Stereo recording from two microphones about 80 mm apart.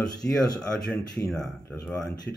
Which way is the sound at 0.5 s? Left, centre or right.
Centre.